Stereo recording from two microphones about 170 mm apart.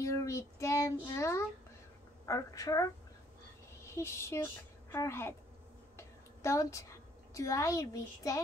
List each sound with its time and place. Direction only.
0.0 s child singing: 20° left (ahead or behind)
1.0 s a woman's voice: 15° left (ahead or behind)
5.9 s a sound: 20° left (ahead or behind)
7.3 s a woman's voice: 20° left (ahead or behind)